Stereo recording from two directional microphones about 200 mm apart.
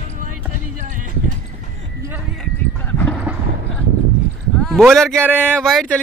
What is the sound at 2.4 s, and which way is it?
Bow-wow, 5° left (ahead or behind).